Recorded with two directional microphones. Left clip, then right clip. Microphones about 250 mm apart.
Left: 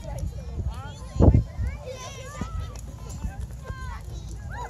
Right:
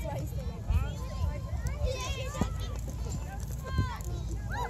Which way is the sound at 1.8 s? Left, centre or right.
Right.